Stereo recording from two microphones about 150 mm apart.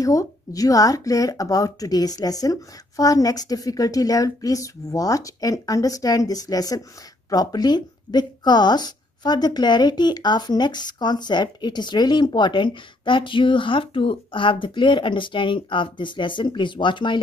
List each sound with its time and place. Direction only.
0.0 s speech: 20° left (ahead or behind)